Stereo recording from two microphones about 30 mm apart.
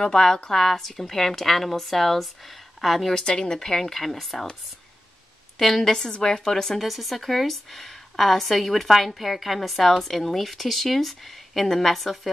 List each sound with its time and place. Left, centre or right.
0.0 s a woman's voice: centre
3.2 s a woman's voice: left; by 4.5 s centre
5.6 s a woman's voice: centre
5.9 s a woman's voice: centre
6.8 s a woman's voice: centre